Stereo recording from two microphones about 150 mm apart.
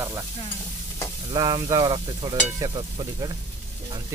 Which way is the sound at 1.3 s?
25° right (ahead or behind).